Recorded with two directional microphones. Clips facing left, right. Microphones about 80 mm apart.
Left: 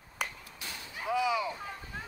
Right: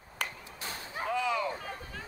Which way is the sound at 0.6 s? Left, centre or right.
Right.